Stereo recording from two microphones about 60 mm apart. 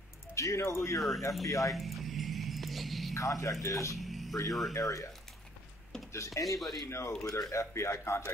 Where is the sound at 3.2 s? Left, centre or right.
Left.